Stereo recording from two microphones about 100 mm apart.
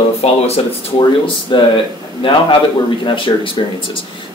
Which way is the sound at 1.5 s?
50° left (ahead or behind).